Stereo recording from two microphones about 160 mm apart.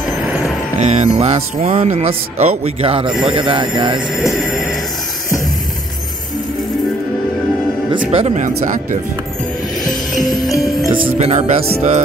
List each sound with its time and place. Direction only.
0.7 s speech: 45° right (ahead or behind)
3.1 s music: centre (ahead or behind)
3.3 s speech: 30° right (ahead or behind)
4.1 s music: centre (ahead or behind)
8.1 s speech: 40° right (ahead or behind)
10.5 s music: 20° left (ahead or behind)
10.9 s speech: 35° right (ahead or behind)